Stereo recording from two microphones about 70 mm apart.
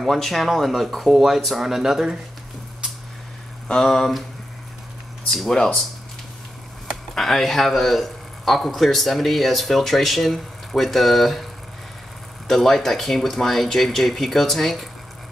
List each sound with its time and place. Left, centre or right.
0.0 s speech: centre
3.7 s speech: centre
5.3 s speech: centre
7.2 s speech: centre
12.4 s speech: centre